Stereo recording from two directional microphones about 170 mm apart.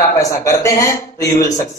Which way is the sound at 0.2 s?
20° left (ahead or behind).